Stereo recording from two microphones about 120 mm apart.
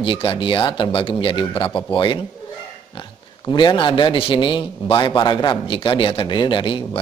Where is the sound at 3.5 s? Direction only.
40° left (ahead or behind).